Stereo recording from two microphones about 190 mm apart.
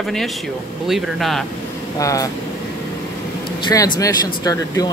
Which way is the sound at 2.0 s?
15° left (ahead or behind).